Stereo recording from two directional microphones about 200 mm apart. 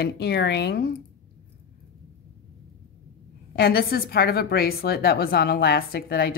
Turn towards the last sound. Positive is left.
turn(degrees=50)  # may be behind; listen again after turning